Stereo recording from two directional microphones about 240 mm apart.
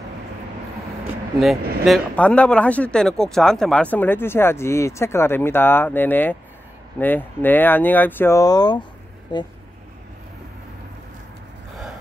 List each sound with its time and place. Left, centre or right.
1.6 s speech: right
1.9 s speech: centre